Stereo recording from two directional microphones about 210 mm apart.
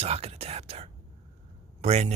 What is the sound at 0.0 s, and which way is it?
Speech, 30° right (ahead or behind).